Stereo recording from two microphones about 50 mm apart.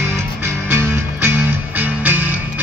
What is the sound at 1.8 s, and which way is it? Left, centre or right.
Music, right.